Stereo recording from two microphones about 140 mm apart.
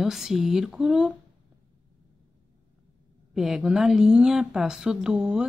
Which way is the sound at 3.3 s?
5° right (ahead or behind).